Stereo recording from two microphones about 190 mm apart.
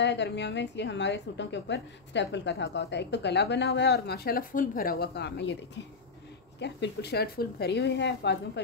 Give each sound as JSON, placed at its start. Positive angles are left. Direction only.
{"t": 0.0, "sound": "a woman's voice", "side_deg": 65}
{"t": 6.6, "sound": "a woman's voice", "side_deg": 65}